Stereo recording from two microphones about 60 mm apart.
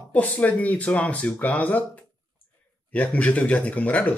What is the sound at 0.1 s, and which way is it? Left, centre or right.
Speech, left.